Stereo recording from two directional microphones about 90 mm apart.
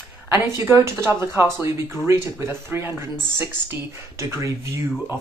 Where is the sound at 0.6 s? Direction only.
30° right (ahead or behind).